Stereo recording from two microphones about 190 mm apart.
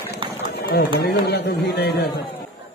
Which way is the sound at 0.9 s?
60° left (ahead or behind).